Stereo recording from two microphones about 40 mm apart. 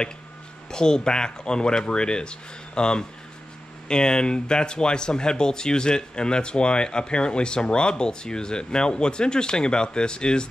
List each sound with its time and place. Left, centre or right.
0.7 s speech: centre